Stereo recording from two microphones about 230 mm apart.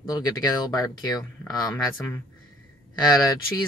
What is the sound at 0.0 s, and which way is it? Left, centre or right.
Speech, centre.